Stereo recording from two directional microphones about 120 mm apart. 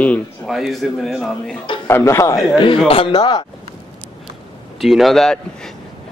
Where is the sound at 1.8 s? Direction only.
20° left (ahead or behind).